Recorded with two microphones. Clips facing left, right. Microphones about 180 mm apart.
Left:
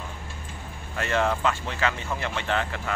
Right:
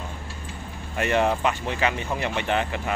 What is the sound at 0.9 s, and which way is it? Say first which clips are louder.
Speech: right 3 dB; 20° right (ahead or behind).